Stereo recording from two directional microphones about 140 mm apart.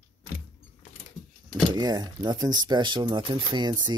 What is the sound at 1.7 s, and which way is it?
Speech, 30° right (ahead or behind).